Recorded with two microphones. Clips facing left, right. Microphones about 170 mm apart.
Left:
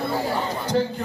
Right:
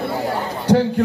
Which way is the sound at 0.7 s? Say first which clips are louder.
Right 10 dB; 70° right (ahead or behind).